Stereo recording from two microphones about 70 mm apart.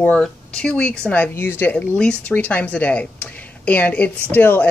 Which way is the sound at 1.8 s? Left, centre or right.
Centre.